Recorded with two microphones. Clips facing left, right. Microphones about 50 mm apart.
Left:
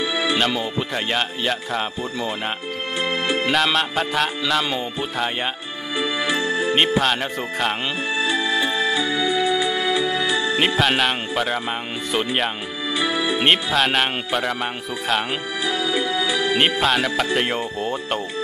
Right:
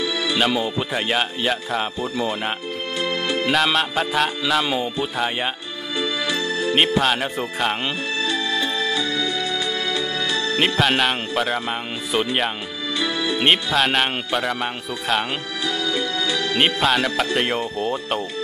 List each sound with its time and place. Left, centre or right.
0.0 s music: centre
0.4 s music: centre
3.0 s music: centre
3.4 s music: centre
5.9 s music: centre
7.0 s music: centre
8.2 s music: centre
10.6 s music: centre
13.0 s music: centre
15.8 s music: centre
16.6 s music: centre